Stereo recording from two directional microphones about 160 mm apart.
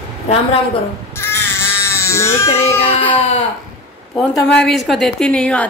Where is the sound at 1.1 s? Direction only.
15° left (ahead or behind).